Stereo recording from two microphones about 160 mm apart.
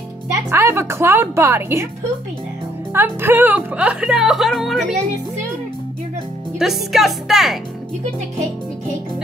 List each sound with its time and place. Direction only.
0.3 s a woman's voice: 15° right (ahead or behind)
2.9 s speech: 15° right (ahead or behind)
6.6 s a woman's voice: centre (ahead or behind)